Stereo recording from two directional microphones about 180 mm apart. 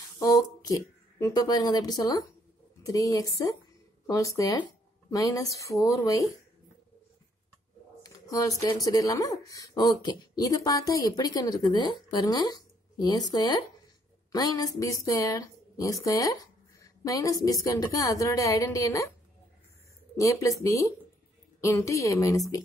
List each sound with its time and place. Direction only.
0.2 s speech: 20° left (ahead or behind)
8.0 s a sound: 20° left (ahead or behind)
8.8 s speech: 20° left (ahead or behind)
20.2 s speech: 20° left (ahead or behind)